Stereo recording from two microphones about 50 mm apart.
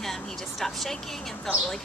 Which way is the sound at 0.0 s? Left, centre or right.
Centre.